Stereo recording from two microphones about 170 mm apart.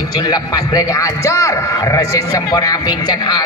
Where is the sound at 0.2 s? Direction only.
20° left (ahead or behind).